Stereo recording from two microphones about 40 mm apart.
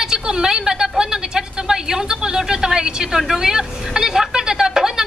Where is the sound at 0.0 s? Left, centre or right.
Centre.